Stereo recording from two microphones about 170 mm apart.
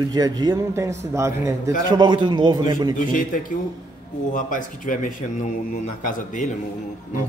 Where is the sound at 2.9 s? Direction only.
55° left (ahead or behind).